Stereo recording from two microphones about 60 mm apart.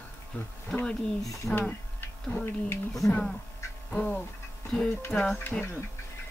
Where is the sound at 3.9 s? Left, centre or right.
Centre.